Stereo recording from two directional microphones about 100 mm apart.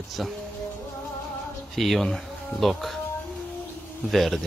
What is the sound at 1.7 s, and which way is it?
Speech, centre (ahead or behind).